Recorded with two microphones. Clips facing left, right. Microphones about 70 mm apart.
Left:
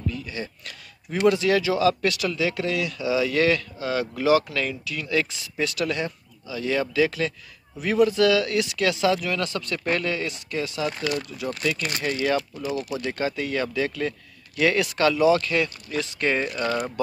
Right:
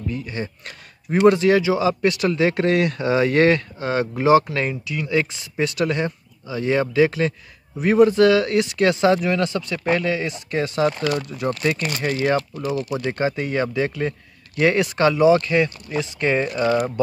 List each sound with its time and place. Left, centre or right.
0.1 s a man's voice: right
12.0 s a man's voice: right